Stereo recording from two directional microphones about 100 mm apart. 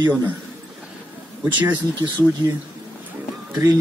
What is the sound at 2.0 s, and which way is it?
Speech, 50° right (ahead or behind).